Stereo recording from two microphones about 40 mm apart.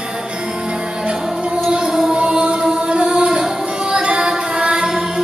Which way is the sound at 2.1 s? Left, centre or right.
Right.